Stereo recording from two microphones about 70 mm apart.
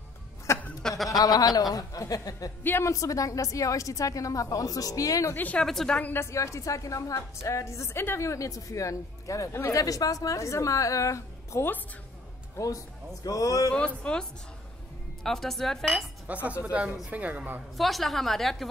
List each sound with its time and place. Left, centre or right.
0.5 s a sound: left
0.8 s speech: centre
1.1 s a woman's voice: left
5.3 s a woman's voice: left
5.6 s speech: centre
6.1 s a woman's voice: left
9.8 s a woman's voice: left
13.7 s speech: centre
15.2 s a woman's voice: centre
16.3 s speech: right
17.7 s a woman's voice: centre